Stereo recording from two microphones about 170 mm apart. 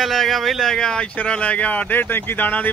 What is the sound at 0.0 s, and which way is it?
Speech, centre (ahead or behind).